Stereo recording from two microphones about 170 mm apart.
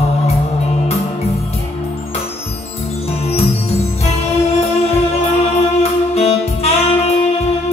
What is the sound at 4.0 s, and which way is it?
Music, 40° left (ahead or behind).